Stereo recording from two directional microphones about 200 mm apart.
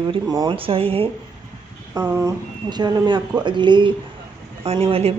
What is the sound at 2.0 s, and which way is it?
Speech, 15° right (ahead or behind).